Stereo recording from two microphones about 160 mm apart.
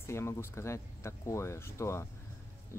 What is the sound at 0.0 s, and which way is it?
Speech, 15° left (ahead or behind).